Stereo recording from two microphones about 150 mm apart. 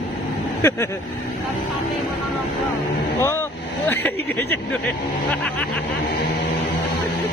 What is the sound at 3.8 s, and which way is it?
Speech, 15° left (ahead or behind).